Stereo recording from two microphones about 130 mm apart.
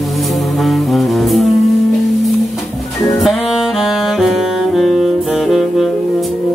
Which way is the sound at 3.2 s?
Centre (ahead or behind).